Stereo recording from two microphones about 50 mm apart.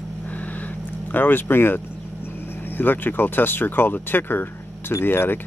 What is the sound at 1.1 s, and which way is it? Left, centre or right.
Speech, left.